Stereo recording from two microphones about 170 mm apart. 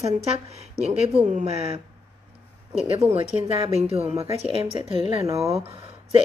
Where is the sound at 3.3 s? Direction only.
45° left (ahead or behind).